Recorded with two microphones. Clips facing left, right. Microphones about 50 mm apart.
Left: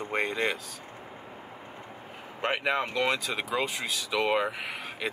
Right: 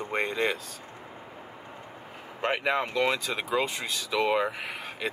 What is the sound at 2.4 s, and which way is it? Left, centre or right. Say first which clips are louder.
Speech: right 1 dB; centre.